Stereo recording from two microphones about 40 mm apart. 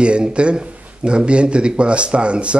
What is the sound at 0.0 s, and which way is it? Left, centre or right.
Speech, right.